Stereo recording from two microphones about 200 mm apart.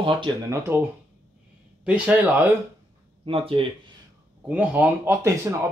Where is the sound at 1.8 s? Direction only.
5° right (ahead or behind).